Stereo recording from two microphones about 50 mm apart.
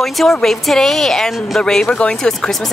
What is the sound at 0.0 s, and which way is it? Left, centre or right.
Speech, centre.